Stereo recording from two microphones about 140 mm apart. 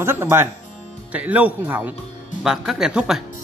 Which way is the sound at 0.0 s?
15° right (ahead or behind).